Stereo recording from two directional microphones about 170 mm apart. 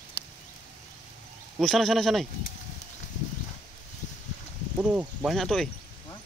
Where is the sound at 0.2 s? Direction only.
30° left (ahead or behind).